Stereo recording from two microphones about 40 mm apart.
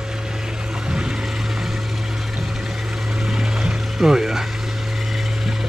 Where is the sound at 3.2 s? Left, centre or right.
Centre.